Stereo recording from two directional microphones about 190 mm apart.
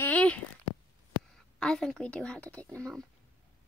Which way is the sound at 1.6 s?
5° left (ahead or behind).